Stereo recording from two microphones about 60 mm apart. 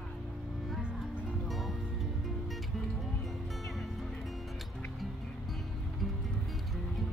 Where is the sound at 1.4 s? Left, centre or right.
Centre.